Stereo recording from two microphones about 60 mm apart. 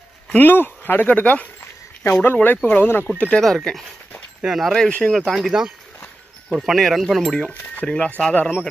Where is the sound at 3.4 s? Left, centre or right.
Centre.